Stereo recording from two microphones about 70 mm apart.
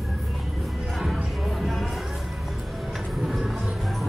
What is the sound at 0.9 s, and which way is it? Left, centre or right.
Music, centre.